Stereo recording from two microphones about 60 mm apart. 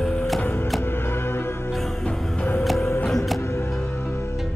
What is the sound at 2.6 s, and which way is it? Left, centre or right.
Music, centre.